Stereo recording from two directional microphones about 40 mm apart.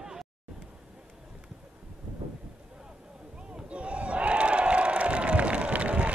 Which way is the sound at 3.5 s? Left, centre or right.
Right.